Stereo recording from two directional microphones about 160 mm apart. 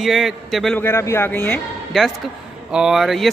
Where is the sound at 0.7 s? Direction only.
15° left (ahead or behind).